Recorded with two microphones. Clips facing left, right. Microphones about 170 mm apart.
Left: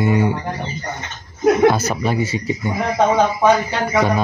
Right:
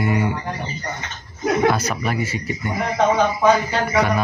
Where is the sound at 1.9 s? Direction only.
20° left (ahead or behind).